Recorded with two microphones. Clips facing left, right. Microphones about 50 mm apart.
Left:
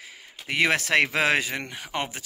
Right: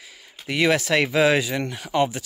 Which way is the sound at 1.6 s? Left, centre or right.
Left.